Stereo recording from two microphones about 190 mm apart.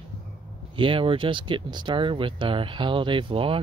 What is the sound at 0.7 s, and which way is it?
Speech, 25° right (ahead or behind).